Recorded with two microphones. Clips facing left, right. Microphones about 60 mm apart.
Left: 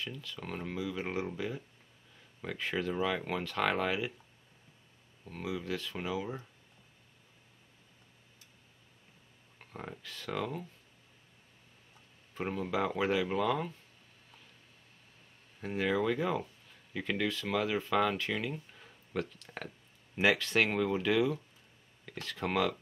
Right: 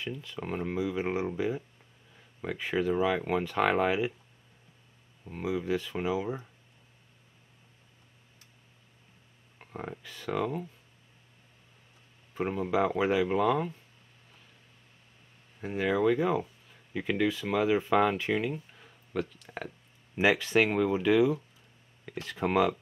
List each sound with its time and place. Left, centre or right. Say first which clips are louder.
0.0 s speech: right 5 dB; centre
5.2 s speech: right 6 dB; centre
9.6 s speech: right 5 dB; centre
12.4 s speech: right 5 dB; centre
15.6 s speech: right 4 dB; centre
18.7 s a sound: right 2 dB; centre
20.2 s speech: right 4 dB; centre